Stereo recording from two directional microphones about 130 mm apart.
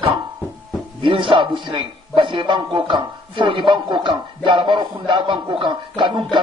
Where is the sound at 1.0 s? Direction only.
40° right (ahead or behind).